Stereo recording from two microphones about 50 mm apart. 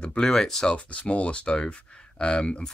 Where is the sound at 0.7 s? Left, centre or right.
Left.